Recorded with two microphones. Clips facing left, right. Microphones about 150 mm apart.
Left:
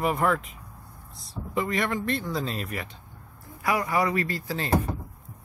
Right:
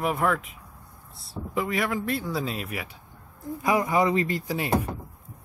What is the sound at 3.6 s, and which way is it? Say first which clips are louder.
Speech: right 2 dB; 20° right (ahead or behind).